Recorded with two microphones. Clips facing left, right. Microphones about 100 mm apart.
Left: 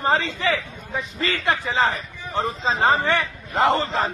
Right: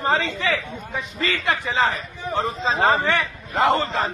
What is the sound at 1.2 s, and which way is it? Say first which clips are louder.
A man's voice: even; 30° left (ahead or behind).